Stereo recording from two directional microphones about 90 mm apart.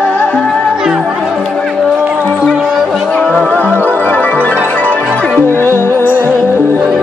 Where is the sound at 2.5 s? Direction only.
5° right (ahead or behind).